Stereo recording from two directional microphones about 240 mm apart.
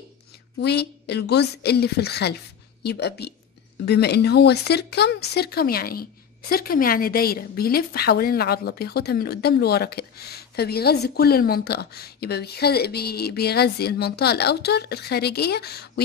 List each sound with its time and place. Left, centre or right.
0.6 s a woman's voice: left